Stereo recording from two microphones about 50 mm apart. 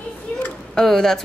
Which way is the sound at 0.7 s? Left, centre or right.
Centre.